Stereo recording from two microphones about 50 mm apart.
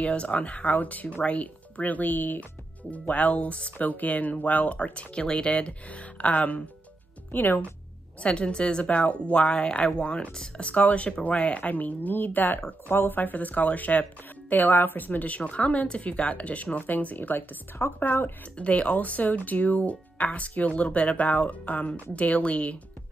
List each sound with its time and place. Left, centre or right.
0.0 s speech: left
7.2 s speech: left
8.2 s speech: left
17.8 s speech: left
18.6 s speech: left